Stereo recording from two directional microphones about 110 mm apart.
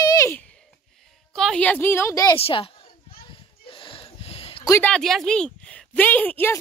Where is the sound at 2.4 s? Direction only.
55° left (ahead or behind).